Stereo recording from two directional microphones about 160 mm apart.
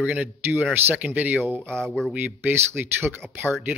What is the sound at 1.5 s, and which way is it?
Speech, 5° left (ahead or behind).